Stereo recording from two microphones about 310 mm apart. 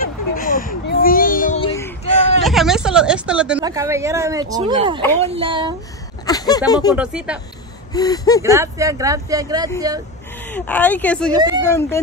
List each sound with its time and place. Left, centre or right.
0.0 s a sound: left
2.4 s a woman's voice: centre
6.2 s speech: centre
7.0 s a woman's voice: centre
7.9 s speech: centre
8.4 s speech: centre
10.5 s a woman's voice: centre
11.3 s speech: centre